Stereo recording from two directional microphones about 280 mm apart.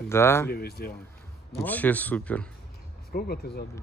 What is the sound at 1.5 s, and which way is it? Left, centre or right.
Speech, centre.